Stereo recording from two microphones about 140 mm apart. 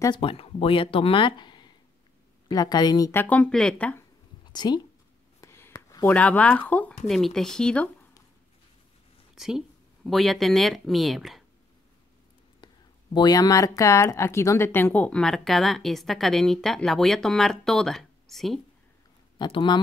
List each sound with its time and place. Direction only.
0.1 s a woman's voice: 40° left (ahead or behind)
3.1 s speech: 15° left (ahead or behind)
4.5 s speech: 30° left (ahead or behind)
5.4 s a sound: 20° left (ahead or behind)
6.1 s speech: 10° left (ahead or behind)
9.3 s speech: 5° right (ahead or behind)
13.1 s speech: 30° left (ahead or behind); by 18.6 s centre (ahead or behind)
19.3 s speech: 30° left (ahead or behind)